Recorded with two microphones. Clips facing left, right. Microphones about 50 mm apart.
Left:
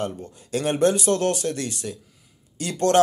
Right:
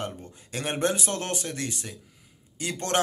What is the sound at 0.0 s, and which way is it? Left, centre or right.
Speech, right.